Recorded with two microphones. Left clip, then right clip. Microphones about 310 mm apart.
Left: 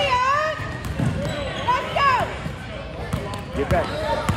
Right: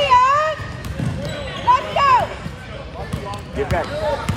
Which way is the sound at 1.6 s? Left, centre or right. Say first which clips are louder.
Right 5 dB; right.